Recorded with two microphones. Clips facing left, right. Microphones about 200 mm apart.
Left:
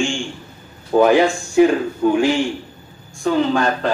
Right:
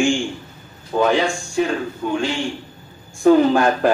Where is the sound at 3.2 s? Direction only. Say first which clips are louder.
Right 4 dB; 15° right (ahead or behind).